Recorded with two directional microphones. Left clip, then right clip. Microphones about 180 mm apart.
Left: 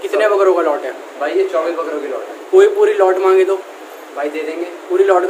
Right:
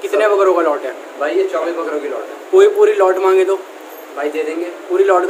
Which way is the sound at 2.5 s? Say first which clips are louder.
Even; centre (ahead or behind).